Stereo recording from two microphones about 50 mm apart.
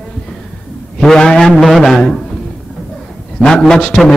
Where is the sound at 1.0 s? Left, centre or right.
Centre.